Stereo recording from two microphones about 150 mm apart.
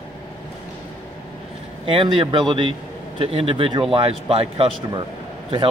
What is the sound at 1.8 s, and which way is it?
A man's voice, 35° right (ahead or behind).